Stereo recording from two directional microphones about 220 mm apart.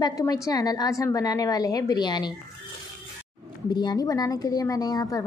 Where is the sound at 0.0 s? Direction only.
15° left (ahead or behind).